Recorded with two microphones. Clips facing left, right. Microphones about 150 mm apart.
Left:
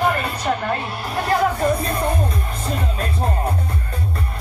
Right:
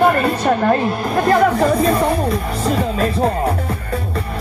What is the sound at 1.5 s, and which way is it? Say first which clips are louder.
Speech: right 6 dB; 90° right.